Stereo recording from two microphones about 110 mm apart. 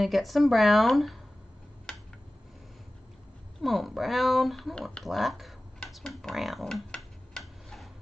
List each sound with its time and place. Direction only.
0.0 s speech: centre (ahead or behind)
3.6 s speech: centre (ahead or behind)
5.0 s typing: centre (ahead or behind)